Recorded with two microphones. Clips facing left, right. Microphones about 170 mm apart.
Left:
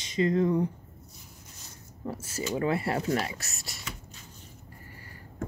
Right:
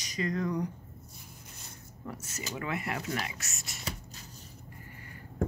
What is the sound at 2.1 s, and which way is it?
Speech, 30° left (ahead or behind).